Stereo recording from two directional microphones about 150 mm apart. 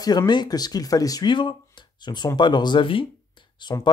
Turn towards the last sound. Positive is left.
turn(degrees=30)  # may be behind; listen again after turning